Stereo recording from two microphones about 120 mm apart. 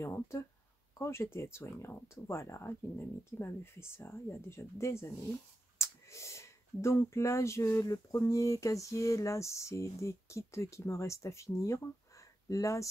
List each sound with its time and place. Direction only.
0.0 s speech: 20° left (ahead or behind)